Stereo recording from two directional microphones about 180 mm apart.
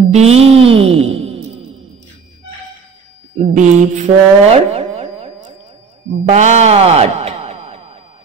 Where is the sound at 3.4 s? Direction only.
40° right (ahead or behind).